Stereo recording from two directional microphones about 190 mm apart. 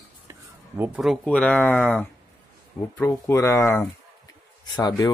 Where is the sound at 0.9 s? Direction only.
Centre (ahead or behind).